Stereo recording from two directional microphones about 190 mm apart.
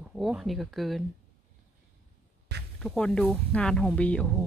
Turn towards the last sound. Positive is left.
turn(degrees=5)  # may be behind; listen again after turning